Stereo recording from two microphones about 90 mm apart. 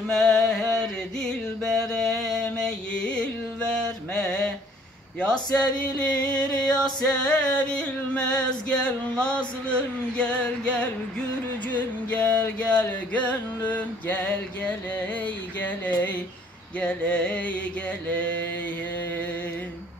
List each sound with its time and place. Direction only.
0.1 s music: 5° left (ahead or behind)
15.2 s speech: 20° left (ahead or behind)
16.8 s music: 10° left (ahead or behind)